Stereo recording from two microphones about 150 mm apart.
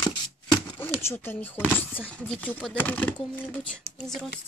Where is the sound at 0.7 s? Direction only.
15° left (ahead or behind).